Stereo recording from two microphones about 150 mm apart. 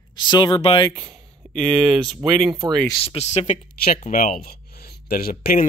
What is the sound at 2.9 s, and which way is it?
Speech, 35° left (ahead or behind).